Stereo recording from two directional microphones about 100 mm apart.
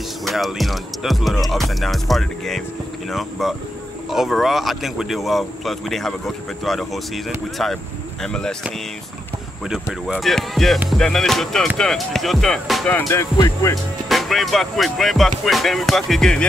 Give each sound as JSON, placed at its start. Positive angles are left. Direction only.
{"t": 0.2, "sound": "speech", "side_deg": 0}
{"t": 9.7, "sound": "speech", "side_deg": -5}
{"t": 12.8, "sound": "music", "side_deg": 20}
{"t": 13.4, "sound": "speech", "side_deg": 35}
{"t": 14.0, "sound": "speech", "side_deg": 0}